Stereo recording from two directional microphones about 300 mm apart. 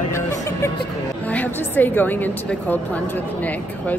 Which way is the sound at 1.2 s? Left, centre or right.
Centre.